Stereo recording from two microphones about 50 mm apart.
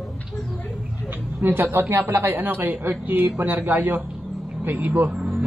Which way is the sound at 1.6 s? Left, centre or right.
Right.